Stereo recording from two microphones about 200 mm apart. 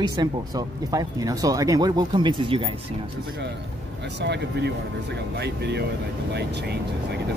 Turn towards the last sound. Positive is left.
turn(degrees=-55)  # may be behind; listen again after turning